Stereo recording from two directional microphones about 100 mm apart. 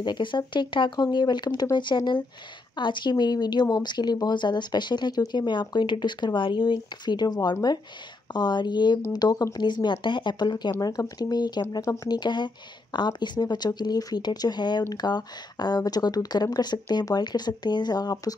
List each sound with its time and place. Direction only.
0.0 s speech: 50° left (ahead or behind)
11.8 s speech: 30° left (ahead or behind)
12.1 s speech: 45° left (ahead or behind)